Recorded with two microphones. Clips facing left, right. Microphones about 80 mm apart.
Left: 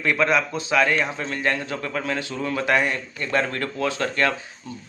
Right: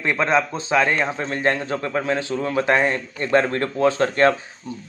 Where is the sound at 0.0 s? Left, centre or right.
Right.